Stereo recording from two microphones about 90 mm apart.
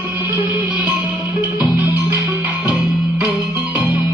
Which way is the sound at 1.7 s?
20° right (ahead or behind).